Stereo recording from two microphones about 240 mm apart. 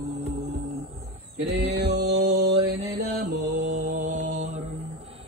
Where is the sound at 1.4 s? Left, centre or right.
Right.